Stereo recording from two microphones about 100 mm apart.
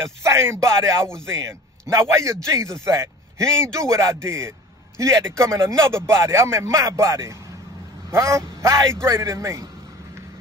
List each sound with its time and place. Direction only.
0.2 s speech: 30° right (ahead or behind)